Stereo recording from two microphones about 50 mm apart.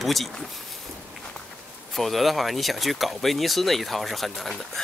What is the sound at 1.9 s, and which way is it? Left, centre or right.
Speech, centre.